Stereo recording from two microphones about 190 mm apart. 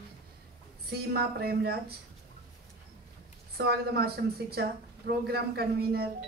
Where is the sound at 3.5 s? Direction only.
55° right (ahead or behind).